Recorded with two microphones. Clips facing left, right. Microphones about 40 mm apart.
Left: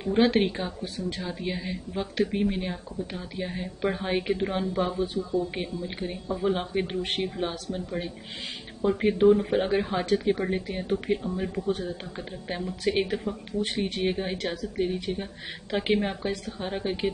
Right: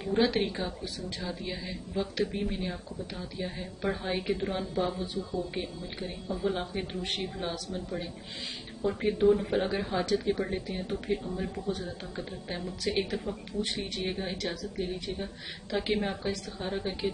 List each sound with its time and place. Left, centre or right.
0.1 s speech: left
0.8 s speech: left
1.2 s speech: left
9.3 s speech: centre
9.7 s speech: left
10.1 s speech: centre
13.7 s speech: left
15.1 s speech: centre